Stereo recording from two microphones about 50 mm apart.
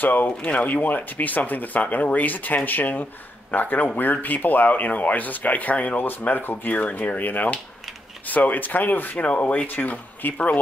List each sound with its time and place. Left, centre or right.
0.0 s speech: left
0.4 s speech: left